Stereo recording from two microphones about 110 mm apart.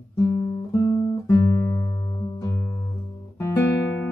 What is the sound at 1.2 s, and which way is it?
Music, 40° left (ahead or behind).